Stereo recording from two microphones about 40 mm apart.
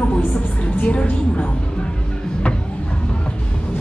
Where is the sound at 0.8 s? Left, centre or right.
Left.